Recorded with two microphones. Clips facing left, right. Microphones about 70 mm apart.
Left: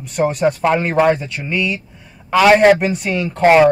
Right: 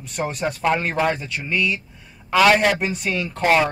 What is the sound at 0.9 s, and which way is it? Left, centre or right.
Speech, centre.